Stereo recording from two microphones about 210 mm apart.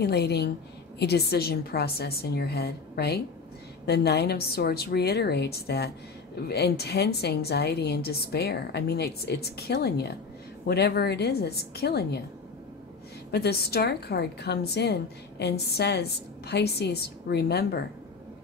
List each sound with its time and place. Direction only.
0.0 s a woman's voice: 50° left (ahead or behind)
13.3 s a woman's voice: 50° left (ahead or behind)